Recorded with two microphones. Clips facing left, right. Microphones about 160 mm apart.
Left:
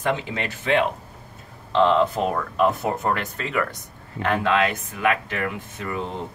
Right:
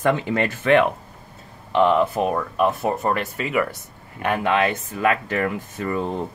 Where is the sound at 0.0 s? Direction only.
55° right (ahead or behind).